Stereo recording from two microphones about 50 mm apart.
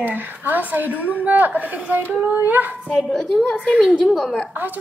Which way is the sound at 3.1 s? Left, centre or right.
Centre.